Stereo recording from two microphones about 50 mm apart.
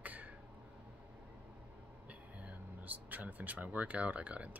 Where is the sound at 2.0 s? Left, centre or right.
Right.